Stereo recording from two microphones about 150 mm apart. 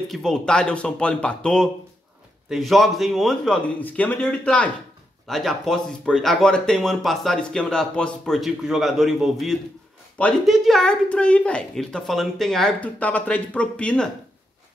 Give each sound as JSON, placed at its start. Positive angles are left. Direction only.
{"t": 0.1, "sound": "speech", "side_deg": 5}